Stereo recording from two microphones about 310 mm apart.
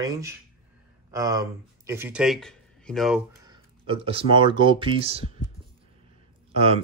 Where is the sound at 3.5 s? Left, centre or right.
Centre.